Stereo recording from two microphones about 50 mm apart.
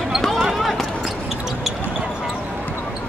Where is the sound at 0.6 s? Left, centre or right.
Centre.